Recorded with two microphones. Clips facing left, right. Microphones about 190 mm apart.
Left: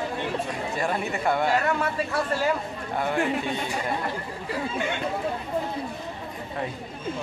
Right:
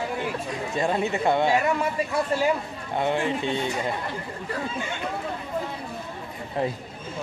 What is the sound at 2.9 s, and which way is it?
Speech, 20° right (ahead or behind).